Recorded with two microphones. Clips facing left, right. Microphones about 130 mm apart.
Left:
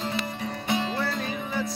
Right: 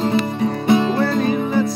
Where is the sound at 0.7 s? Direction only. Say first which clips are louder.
Right 11 dB; 70° right (ahead or behind).